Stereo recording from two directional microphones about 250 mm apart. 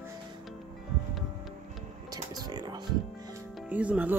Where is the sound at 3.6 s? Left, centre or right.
Centre.